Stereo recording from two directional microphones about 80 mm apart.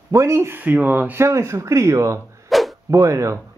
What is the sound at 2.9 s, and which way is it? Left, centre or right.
Speech, right.